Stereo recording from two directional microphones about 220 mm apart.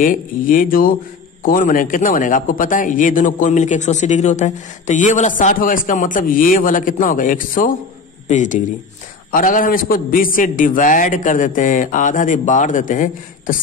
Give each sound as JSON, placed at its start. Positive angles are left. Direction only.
{"t": 0.0, "sound": "a man's voice", "side_deg": 40}